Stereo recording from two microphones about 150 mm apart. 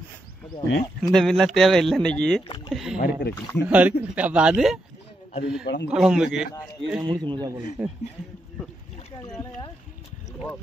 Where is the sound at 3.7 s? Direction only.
10° right (ahead or behind).